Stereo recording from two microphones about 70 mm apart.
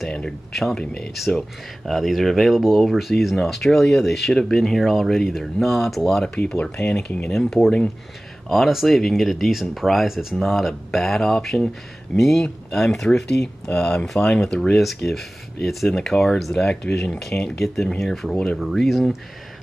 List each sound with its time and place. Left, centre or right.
0.6 s speech: centre
7.2 s speech: centre